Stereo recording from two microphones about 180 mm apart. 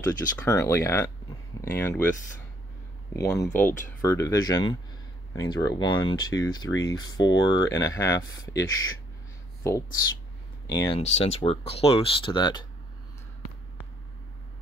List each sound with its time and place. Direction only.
0.0 s speech: 15° left (ahead or behind)
3.1 s speech: 15° left (ahead or behind)
11.0 s speech: 35° left (ahead or behind)